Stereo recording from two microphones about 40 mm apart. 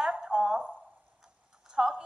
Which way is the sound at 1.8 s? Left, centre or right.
Centre.